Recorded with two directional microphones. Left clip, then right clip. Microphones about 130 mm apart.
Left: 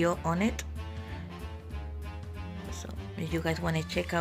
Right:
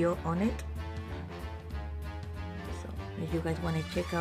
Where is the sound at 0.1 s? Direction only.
15° left (ahead or behind).